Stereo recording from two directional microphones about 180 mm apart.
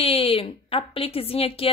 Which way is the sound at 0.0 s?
30° left (ahead or behind).